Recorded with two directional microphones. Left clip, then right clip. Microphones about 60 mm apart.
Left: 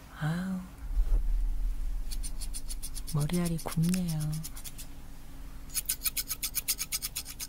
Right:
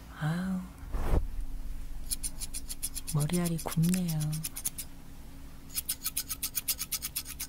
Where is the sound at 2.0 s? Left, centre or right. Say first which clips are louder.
Right 5 dB; right.